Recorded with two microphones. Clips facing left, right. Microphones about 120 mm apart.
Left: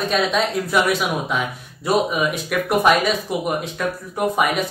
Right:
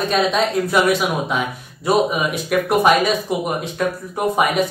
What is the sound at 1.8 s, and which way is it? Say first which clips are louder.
Speech: right 2 dB; centre (ahead or behind).